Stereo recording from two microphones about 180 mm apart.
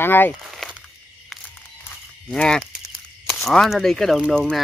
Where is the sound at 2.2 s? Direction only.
5° left (ahead or behind).